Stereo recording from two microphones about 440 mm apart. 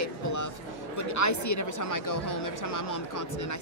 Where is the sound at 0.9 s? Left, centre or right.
Left.